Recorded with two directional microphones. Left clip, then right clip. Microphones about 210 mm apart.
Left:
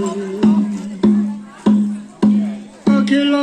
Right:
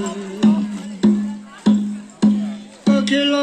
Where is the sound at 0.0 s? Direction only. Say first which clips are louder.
Left 3 dB; 45° right (ahead or behind).